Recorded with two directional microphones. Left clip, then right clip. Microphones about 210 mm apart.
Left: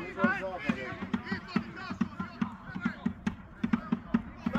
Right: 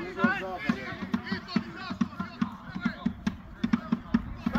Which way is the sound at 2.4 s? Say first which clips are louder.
Right 3 dB; 20° left (ahead or behind).